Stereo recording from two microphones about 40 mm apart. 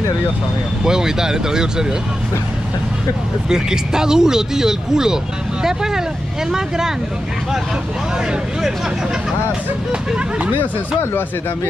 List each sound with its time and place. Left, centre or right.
0.8 s speech: centre
3.4 s speech: centre
10.1 s speech: right